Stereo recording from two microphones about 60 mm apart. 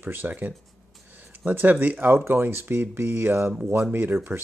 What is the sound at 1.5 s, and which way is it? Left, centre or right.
Speech, right.